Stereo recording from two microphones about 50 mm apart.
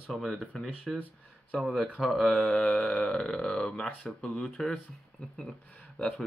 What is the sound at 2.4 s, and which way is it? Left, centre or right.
Speech, centre.